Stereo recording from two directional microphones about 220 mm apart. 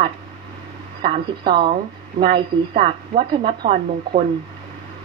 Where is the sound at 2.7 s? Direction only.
20° right (ahead or behind).